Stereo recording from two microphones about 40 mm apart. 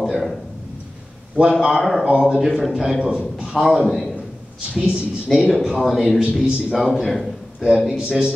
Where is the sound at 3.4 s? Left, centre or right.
Centre.